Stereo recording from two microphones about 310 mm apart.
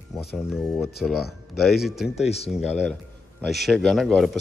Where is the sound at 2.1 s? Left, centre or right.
Centre.